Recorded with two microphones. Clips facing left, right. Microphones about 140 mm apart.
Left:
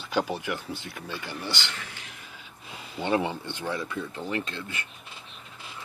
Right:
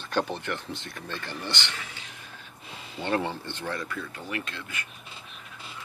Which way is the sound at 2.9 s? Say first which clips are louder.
Left 2 dB; 15° left (ahead or behind).